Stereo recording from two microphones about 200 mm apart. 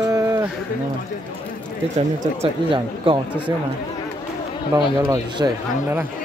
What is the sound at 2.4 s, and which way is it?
Speech, 25° right (ahead or behind).